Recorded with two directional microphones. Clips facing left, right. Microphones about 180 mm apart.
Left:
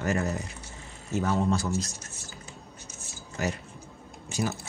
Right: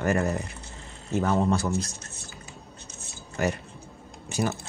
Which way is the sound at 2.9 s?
60° right (ahead or behind).